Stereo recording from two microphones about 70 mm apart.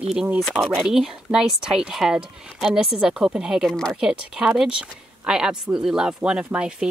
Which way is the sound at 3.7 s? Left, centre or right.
Centre.